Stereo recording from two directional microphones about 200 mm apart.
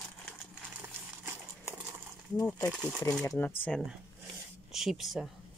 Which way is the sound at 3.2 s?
15° left (ahead or behind).